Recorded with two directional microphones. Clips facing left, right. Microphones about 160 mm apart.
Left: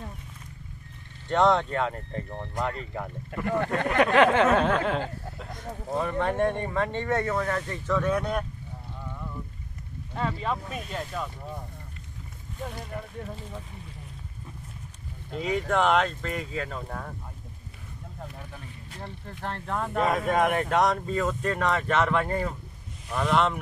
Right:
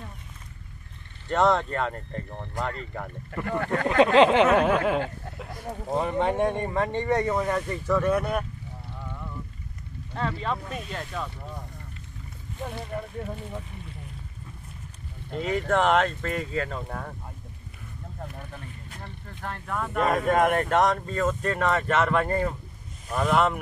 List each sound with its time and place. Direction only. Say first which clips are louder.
1.3 s speech: even; centre (ahead or behind)
3.3 s speech: even; 20° left (ahead or behind)
4.0 s speech: right 3 dB; 20° right (ahead or behind); by 5.6 s 5° right (ahead or behind)
5.9 s speech: right 2 dB; 15° right (ahead or behind)
10.1 s speech: even; 10° left (ahead or behind)
15.3 s speech: right 1 dB; centre (ahead or behind)
19.4 s speech: left 1 dB; 30° left (ahead or behind)
20.0 s speech: right 2 dB; centre (ahead or behind)